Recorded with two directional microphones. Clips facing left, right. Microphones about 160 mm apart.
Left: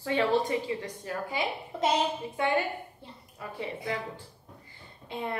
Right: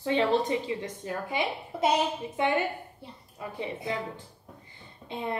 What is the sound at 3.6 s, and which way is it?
Speech, 20° right (ahead or behind).